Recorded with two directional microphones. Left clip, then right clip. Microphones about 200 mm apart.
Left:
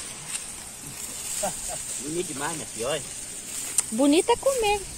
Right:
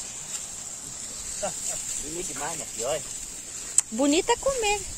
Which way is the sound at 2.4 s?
50° left (ahead or behind).